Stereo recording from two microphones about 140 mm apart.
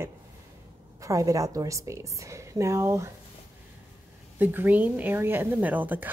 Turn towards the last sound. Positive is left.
turn(degrees=-10)  # may be behind; listen again after turning